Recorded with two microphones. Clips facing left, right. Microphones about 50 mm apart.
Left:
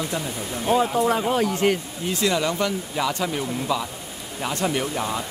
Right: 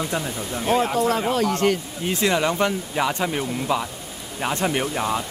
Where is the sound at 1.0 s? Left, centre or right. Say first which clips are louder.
Even; centre.